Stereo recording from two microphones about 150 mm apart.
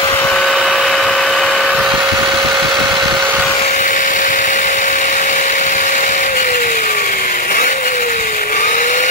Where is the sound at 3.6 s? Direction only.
55° left (ahead or behind).